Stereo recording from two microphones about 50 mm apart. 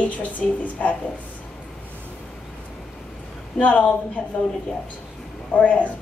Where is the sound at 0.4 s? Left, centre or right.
Centre.